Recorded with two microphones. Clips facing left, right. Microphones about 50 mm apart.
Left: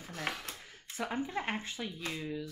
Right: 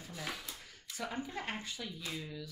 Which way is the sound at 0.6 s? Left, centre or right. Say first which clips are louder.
Left 4 dB; left.